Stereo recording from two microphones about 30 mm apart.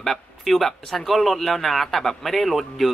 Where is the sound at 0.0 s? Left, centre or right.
Centre.